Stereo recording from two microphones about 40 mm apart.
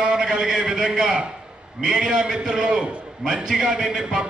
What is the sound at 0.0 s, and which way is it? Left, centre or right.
A man's voice, right.